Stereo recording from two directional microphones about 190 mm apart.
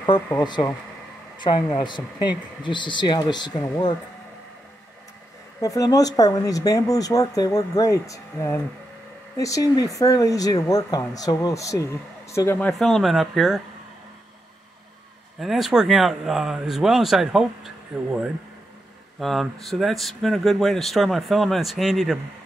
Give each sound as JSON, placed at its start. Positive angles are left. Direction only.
{"t": 0.3, "sound": "speech", "side_deg": 20}
{"t": 5.6, "sound": "speech", "side_deg": 20}
{"t": 15.4, "sound": "speech", "side_deg": 0}